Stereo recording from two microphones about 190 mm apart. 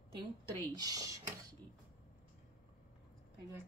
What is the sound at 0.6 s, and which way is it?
Speech, 20° right (ahead or behind).